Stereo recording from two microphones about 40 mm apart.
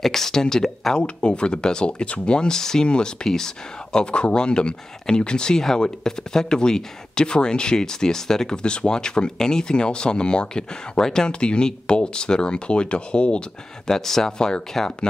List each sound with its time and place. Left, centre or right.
0.0 s speech: centre
1.0 s speech: left
13.8 s speech: centre